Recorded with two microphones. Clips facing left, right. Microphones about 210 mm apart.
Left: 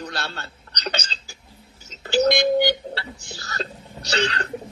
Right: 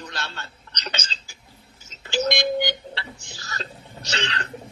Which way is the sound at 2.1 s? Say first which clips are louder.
Left 5 dB; 35° left (ahead or behind).